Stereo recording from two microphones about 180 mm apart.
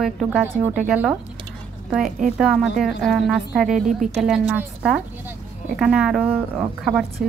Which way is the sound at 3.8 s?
45° right (ahead or behind).